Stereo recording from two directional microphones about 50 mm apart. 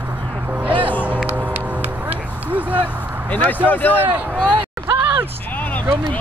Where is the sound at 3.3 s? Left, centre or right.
Left.